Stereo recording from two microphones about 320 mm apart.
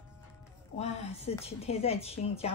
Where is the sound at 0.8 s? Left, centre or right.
Centre.